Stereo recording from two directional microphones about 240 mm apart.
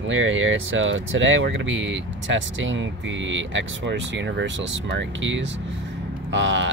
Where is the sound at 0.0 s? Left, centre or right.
Right.